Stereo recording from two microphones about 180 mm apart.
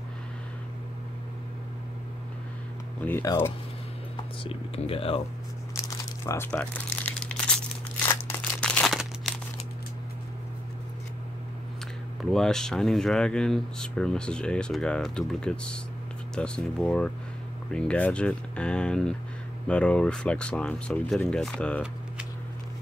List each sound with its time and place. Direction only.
3.1 s speech: 15° left (ahead or behind)
4.4 s speech: 30° left (ahead or behind)
5.8 s crumpling: 15° left (ahead or behind)
8.1 s a sound: 10° left (ahead or behind)
12.2 s speech: centre (ahead or behind)